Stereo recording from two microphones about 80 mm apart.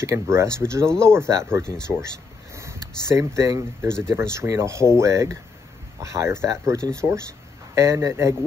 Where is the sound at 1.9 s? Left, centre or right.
Right.